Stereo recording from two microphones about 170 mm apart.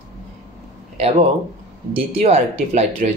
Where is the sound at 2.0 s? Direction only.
35° right (ahead or behind).